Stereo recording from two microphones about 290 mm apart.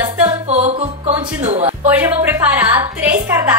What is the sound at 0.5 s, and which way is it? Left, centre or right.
Music, right.